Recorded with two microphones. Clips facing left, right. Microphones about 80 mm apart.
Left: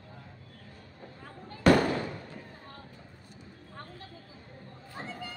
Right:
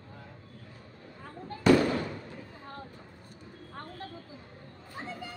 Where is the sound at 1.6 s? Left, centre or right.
Left.